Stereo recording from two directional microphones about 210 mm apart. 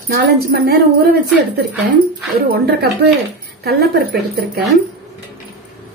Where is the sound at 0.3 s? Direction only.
50° right (ahead or behind).